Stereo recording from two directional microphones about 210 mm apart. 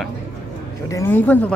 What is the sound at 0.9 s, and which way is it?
Speech, 10° left (ahead or behind).